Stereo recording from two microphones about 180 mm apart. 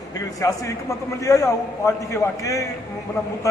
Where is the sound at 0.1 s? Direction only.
20° left (ahead or behind).